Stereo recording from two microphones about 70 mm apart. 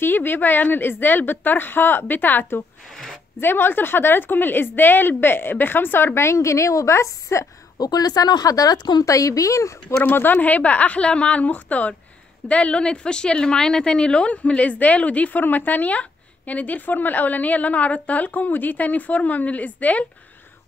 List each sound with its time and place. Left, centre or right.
0.0 s a woman's voice: left
2.9 s speech: centre
3.3 s a woman's voice: left
7.7 s speech: left
9.0 s speech: left
10.0 s a woman's voice: left